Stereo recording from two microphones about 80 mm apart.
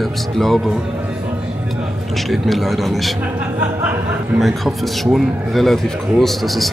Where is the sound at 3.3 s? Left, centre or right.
Centre.